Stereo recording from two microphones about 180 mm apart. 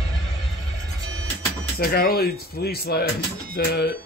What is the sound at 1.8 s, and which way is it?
Speech, 60° left (ahead or behind).